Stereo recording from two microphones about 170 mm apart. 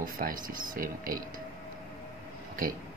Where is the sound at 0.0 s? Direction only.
55° right (ahead or behind).